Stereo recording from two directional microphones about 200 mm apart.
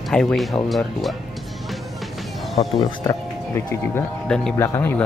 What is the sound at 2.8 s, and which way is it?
Speech, 15° left (ahead or behind).